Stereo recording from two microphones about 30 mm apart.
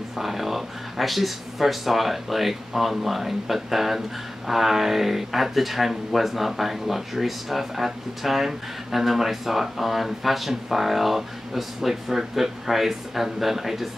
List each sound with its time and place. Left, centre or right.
0.2 s speech: centre